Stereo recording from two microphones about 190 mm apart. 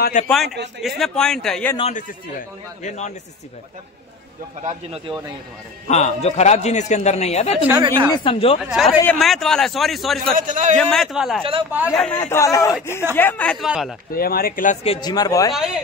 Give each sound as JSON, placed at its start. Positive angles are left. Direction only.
{"t": 0.0, "sound": "a man's voice", "side_deg": 40}
{"t": 0.3, "sound": "speech", "side_deg": 0}
{"t": 1.8, "sound": "a man's voice", "side_deg": 35}
{"t": 4.6, "sound": "speech", "side_deg": -30}
{"t": 5.9, "sound": "a man's voice", "side_deg": 35}
{"t": 7.5, "sound": "speech", "side_deg": -10}
{"t": 8.1, "sound": "speech", "side_deg": 25}
{"t": 8.6, "sound": "speech", "side_deg": 0}
{"t": 10.3, "sound": "a man's voice", "side_deg": -45}
{"t": 10.8, "sound": "speech", "side_deg": 0}
{"t": 12.1, "sound": "speech", "side_deg": 15}
{"t": 14.1, "sound": "a man's voice", "side_deg": 50}
{"t": 15.5, "sound": "speech", "side_deg": 0}